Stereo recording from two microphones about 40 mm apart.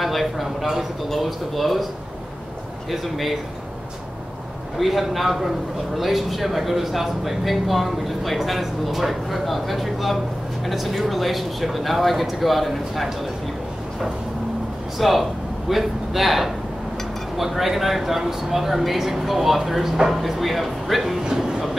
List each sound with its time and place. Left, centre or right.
0.0 s speech: centre
2.9 s speech: centre
4.7 s speech: centre
15.0 s speech: centre
21.2 s a sound: centre